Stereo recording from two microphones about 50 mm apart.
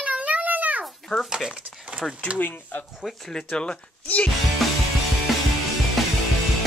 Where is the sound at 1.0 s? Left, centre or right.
Centre.